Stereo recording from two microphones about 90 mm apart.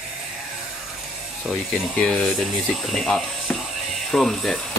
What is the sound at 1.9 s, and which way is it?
Speech, 15° left (ahead or behind).